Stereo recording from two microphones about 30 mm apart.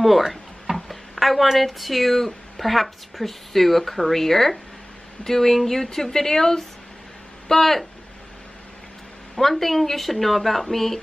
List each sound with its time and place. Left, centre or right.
0.0 s a woman's voice: centre
9.3 s speech: centre